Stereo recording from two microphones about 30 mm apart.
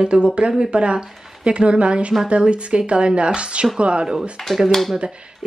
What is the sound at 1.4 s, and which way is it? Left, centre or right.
Speech, right.